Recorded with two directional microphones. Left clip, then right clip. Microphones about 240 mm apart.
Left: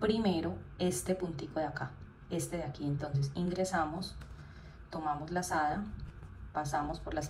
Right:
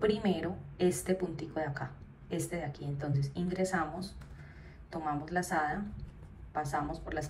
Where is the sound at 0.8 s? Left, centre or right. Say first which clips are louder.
Right 3 dB; centre.